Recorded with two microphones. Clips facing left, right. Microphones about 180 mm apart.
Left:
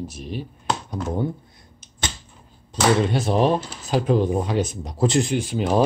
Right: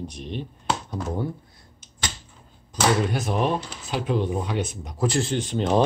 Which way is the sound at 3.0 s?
30° left (ahead or behind).